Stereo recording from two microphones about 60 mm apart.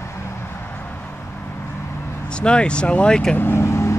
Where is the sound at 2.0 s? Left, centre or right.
Left.